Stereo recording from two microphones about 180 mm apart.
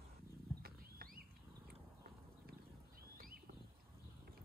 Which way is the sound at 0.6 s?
55° right (ahead or behind).